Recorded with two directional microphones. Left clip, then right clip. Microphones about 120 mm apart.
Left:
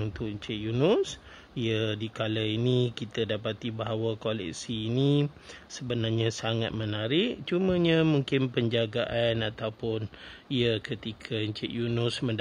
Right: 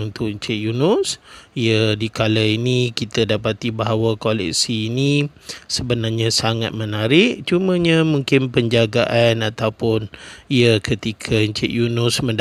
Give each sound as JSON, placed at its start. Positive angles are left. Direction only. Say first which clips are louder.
{"t": 0.2, "sound": "speech", "louder": "right 16 dB", "side_deg": -40}